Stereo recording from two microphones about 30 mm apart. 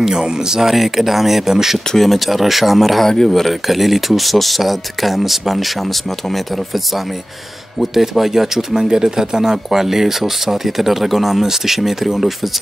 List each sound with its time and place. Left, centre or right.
0.6 s speech: centre
2.0 s speech: centre
3.0 s speech: centre
3.3 s speech: centre
3.6 s speech: centre
7.8 s speech: centre